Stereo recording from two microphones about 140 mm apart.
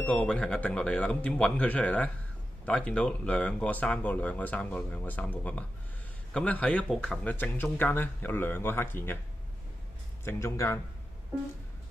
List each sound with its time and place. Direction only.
0.0 s speech: 5° left (ahead or behind)
10.2 s speech: 20° left (ahead or behind)